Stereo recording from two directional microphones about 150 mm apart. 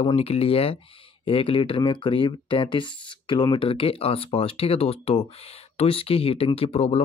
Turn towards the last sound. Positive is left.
turn(degrees=45)  # may be behind; listen again after turning